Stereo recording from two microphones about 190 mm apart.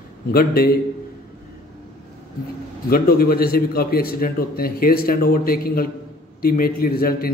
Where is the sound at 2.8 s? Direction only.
50° left (ahead or behind).